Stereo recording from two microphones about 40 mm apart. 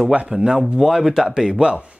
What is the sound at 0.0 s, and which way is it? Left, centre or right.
Speech, right.